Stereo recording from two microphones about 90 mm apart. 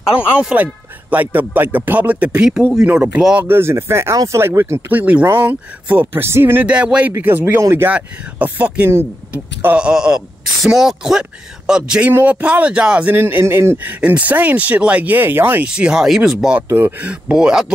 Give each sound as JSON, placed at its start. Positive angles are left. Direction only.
{"t": 0.1, "sound": "speech", "side_deg": -15}
{"t": 3.4, "sound": "speech", "side_deg": -25}
{"t": 4.8, "sound": "speech", "side_deg": -15}
{"t": 6.7, "sound": "speech", "side_deg": -10}
{"t": 7.9, "sound": "speech", "side_deg": -15}
{"t": 12.1, "sound": "speech", "side_deg": -20}
{"t": 13.1, "sound": "speech", "side_deg": -25}
{"t": 15.7, "sound": "speech", "side_deg": -10}
{"t": 16.6, "sound": "speech", "side_deg": -25}
{"t": 17.1, "sound": "speech", "side_deg": -10}